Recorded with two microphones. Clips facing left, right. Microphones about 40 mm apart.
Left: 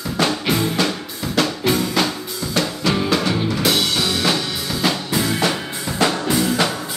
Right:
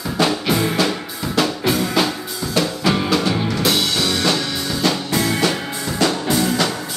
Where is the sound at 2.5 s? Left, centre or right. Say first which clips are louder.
Right 2 dB; centre.